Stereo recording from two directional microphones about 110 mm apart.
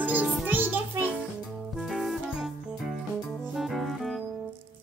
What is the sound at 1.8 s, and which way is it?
Music, centre (ahead or behind).